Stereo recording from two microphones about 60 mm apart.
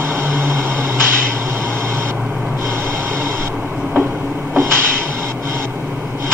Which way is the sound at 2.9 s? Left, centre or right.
Right.